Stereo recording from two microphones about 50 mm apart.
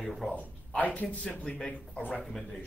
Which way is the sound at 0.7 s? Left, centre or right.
Left.